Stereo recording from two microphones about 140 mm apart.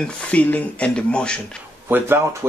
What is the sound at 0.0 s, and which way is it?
Speech, 10° left (ahead or behind).